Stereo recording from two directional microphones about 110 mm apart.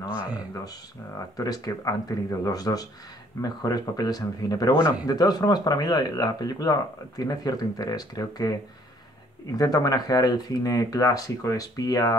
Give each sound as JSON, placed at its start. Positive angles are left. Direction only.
{"t": 0.1, "sound": "speech", "side_deg": -10}
{"t": 1.3, "sound": "speech", "side_deg": 35}